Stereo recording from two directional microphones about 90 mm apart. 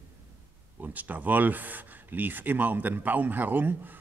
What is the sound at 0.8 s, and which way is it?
Speech, 20° right (ahead or behind).